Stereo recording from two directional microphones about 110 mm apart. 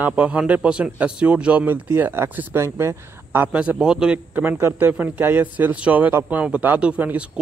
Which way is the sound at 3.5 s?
10° right (ahead or behind).